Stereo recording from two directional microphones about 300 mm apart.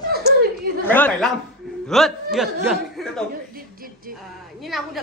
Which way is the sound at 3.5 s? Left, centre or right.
Right.